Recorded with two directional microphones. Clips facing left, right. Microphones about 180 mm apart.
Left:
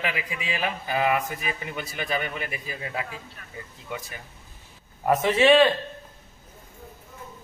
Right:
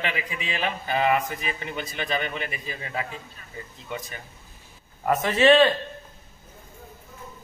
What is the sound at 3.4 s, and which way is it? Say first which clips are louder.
Speech: left 1 dB; 65° left (ahead or behind).